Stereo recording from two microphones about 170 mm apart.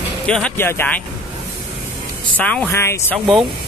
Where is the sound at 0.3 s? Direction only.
10° left (ahead or behind).